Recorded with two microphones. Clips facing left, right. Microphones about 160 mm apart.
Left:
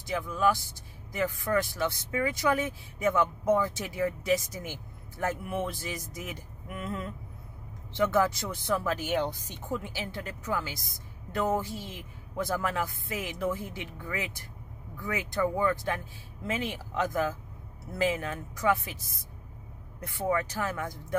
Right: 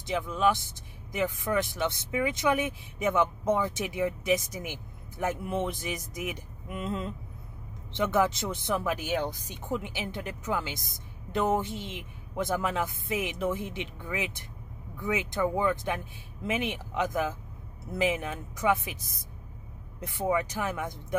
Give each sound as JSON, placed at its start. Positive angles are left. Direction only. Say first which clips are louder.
{"t": 0.0, "sound": "speech", "louder": "right 1 dB", "side_deg": -20}